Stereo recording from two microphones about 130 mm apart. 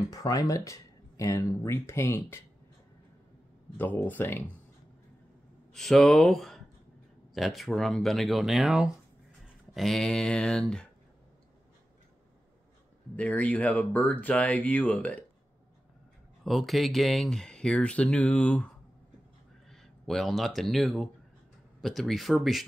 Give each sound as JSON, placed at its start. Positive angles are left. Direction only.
{"t": 0.1, "sound": "speech", "side_deg": 25}
{"t": 3.7, "sound": "speech", "side_deg": 15}
{"t": 5.7, "sound": "speech", "side_deg": 5}
{"t": 13.1, "sound": "speech", "side_deg": 10}
{"t": 16.4, "sound": "speech", "side_deg": 0}
{"t": 19.7, "sound": "speech", "side_deg": 0}